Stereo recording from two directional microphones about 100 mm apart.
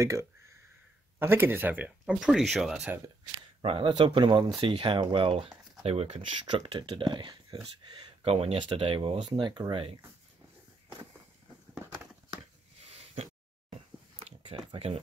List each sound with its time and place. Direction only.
0.0 s a sound: 30° right (ahead or behind)
1.2 s speech: 20° right (ahead or behind); by 2.9 s 5° right (ahead or behind)
3.6 s speech: 60° right (ahead or behind)
5.9 s speech: 90° right
6.4 s speech: 50° right (ahead or behind)
8.2 s speech: 85° right
8.7 s speech: 70° right (ahead or behind)
9.4 s speech: 50° right (ahead or behind)
11.7 s a sound: 10° right (ahead or behind)
12.9 s a sound: 90° right